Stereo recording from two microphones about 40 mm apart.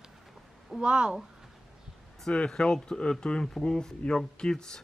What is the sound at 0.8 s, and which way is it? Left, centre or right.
Speech, right.